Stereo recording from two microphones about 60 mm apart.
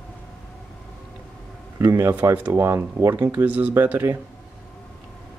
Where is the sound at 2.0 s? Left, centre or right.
Right.